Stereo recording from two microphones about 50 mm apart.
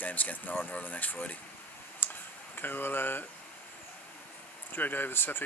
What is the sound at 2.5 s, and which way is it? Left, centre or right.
Speech, left.